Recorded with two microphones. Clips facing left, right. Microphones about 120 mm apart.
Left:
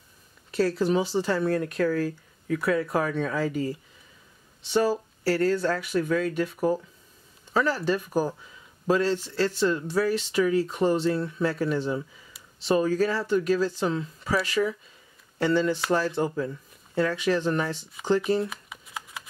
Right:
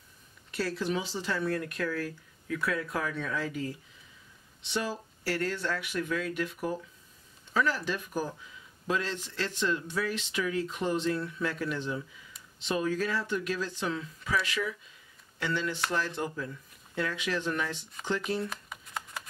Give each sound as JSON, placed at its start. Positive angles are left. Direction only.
{"t": 0.6, "sound": "speech", "side_deg": 40}
{"t": 4.6, "sound": "speech", "side_deg": 40}
{"t": 18.0, "sound": "speech", "side_deg": 5}
{"t": 18.5, "sound": "shuffling cards", "side_deg": 0}